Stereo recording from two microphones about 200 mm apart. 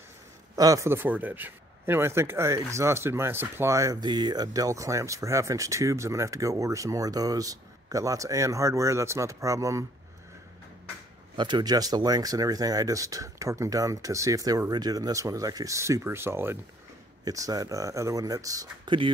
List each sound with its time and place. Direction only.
0.6 s a man's voice: 15° right (ahead or behind)
11.3 s a man's voice: 20° right (ahead or behind)